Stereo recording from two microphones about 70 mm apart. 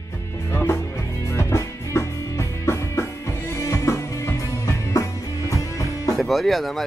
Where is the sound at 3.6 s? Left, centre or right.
Left.